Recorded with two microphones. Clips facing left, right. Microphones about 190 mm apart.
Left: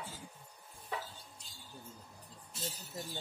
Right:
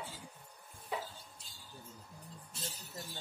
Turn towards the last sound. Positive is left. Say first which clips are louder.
# left 3 dB
turn(degrees=0)  # may be behind; listen again after turning